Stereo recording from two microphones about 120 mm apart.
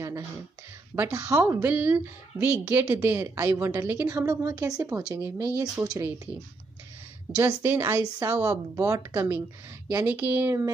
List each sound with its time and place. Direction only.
0.9 s speech: 30° right (ahead or behind)
7.3 s speech: 25° right (ahead or behind)